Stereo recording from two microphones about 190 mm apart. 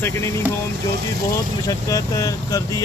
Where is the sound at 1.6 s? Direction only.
20° left (ahead or behind).